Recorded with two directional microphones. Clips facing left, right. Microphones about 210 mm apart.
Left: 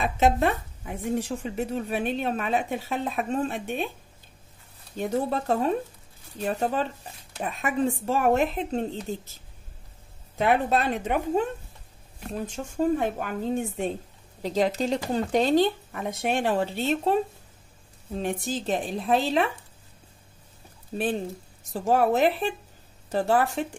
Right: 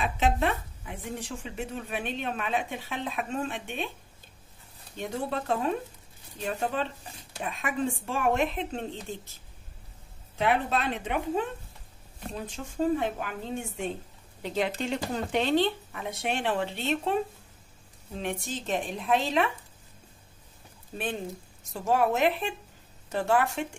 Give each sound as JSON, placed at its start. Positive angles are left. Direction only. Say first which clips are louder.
{"t": 0.0, "sound": "speech", "louder": "left 4 dB", "side_deg": 40}
{"t": 4.9, "sound": "speech", "louder": "left 5 dB", "side_deg": 40}
{"t": 10.3, "sound": "a woman's voice", "louder": "left 4 dB", "side_deg": 45}
{"t": 12.4, "sound": "a woman's voice", "louder": "left 2 dB", "side_deg": 45}
{"t": 18.2, "sound": "speech", "louder": "left 5 dB", "side_deg": 35}
{"t": 21.7, "sound": "speech", "louder": "left 3 dB", "side_deg": 35}